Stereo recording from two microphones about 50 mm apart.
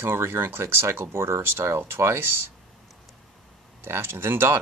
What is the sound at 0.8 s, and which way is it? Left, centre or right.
Speech, right.